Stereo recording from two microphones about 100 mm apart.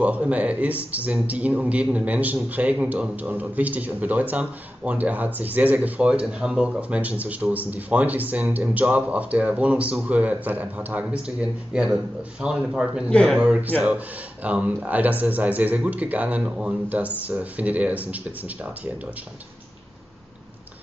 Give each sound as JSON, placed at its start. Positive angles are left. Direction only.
{"t": 0.0, "sound": "a man's voice", "side_deg": -15}
{"t": 13.1, "sound": "speech", "side_deg": 10}
{"t": 13.4, "sound": "a man's voice", "side_deg": -15}